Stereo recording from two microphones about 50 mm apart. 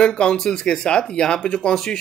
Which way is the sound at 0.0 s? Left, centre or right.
Centre.